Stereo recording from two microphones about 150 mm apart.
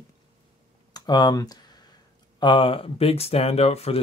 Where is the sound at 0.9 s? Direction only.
30° left (ahead or behind).